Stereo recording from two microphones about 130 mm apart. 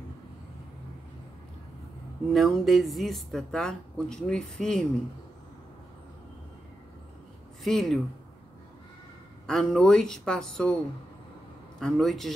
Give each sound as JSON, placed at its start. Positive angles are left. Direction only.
{"t": 2.3, "sound": "speech", "side_deg": 0}
{"t": 7.6, "sound": "speech", "side_deg": 0}
{"t": 9.5, "sound": "speech", "side_deg": 5}
{"t": 11.8, "sound": "speech", "side_deg": 0}